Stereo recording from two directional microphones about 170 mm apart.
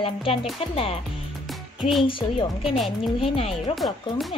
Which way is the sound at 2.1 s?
30° left (ahead or behind).